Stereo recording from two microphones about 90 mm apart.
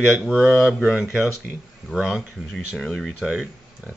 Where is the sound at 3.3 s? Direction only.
5° right (ahead or behind).